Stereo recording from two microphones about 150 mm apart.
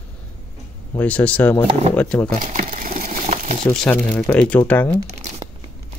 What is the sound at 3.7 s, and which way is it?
Speech, 5° left (ahead or behind).